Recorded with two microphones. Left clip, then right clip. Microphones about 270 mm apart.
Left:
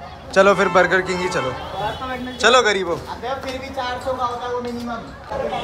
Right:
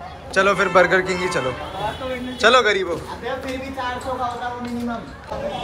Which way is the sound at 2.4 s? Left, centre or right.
Centre.